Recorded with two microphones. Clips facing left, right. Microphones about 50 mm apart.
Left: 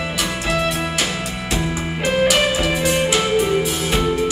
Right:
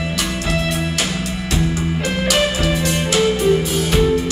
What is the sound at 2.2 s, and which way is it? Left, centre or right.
Music, centre.